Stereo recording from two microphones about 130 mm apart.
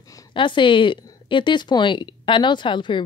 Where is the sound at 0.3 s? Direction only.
40° left (ahead or behind).